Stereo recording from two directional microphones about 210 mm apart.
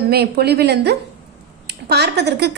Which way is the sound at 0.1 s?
50° right (ahead or behind).